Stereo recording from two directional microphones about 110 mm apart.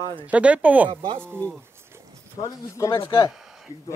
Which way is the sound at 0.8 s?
45° right (ahead or behind).